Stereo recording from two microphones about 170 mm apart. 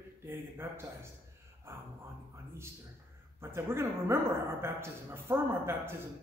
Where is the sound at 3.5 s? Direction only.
15° right (ahead or behind).